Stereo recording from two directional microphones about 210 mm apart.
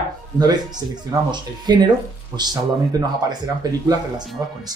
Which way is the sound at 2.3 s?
20° right (ahead or behind).